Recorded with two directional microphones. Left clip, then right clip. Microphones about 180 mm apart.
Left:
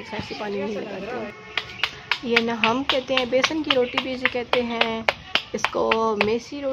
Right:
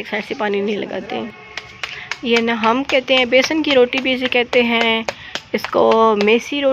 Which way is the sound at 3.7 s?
25° right (ahead or behind).